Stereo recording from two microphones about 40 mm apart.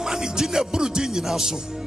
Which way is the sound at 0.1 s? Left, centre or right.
Centre.